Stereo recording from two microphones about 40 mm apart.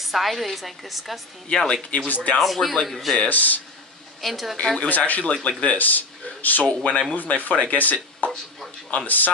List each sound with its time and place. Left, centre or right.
0.0 s a woman's voice: centre
2.0 s speech: left
2.3 s a woman's voice: centre
3.2 s speech: left
4.2 s a woman's voice: centre
4.8 s speech: left
5.2 s speech: left
5.8 s speech: left
6.8 s speech: left
7.2 s speech: left